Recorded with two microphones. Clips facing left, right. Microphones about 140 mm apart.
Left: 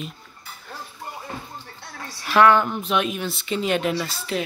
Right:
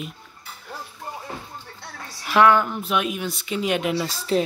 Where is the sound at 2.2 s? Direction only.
10° right (ahead or behind).